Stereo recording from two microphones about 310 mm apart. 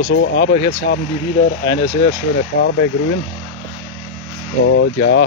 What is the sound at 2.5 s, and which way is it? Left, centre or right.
Speech, left.